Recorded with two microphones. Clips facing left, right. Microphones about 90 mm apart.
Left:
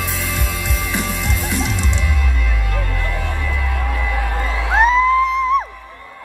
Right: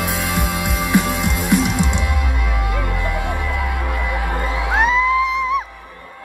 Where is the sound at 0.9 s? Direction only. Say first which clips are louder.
Right 6 dB; 15° right (ahead or behind).